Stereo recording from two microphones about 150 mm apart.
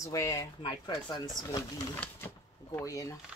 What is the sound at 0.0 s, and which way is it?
Speech, 20° left (ahead or behind).